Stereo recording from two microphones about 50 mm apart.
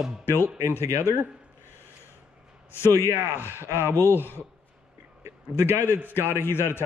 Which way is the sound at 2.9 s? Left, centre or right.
Right.